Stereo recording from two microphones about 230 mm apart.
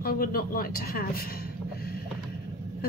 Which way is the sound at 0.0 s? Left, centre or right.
Left.